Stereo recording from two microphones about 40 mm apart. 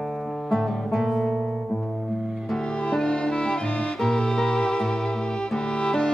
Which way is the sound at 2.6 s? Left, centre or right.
Left.